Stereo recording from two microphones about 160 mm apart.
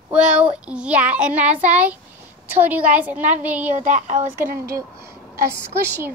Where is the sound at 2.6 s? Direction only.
10° right (ahead or behind).